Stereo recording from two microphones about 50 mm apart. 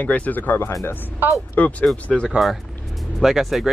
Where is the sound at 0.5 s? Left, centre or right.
Left.